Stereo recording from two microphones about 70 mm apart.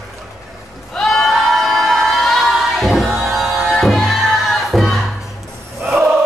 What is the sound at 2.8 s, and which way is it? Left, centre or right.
Music, centre.